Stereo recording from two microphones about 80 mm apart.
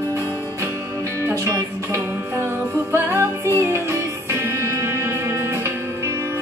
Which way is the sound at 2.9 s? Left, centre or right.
Right.